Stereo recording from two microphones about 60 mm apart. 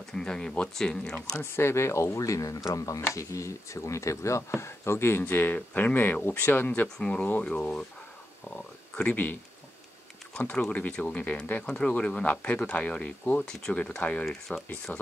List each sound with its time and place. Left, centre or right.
0.1 s speech: centre
1.4 s speech: left
5.2 s speech: left
7.0 s speech: centre
10.7 s speech: left
13.4 s speech: centre; by 15.0 s left